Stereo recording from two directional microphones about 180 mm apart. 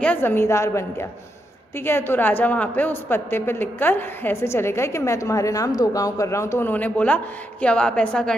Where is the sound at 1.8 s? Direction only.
10° left (ahead or behind).